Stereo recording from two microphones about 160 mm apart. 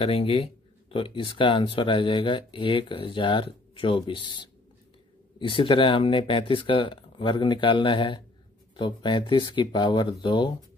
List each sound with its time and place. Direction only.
0.0 s speech: 35° left (ahead or behind)